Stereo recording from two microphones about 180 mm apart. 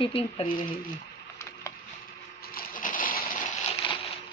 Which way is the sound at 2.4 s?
55° left (ahead or behind).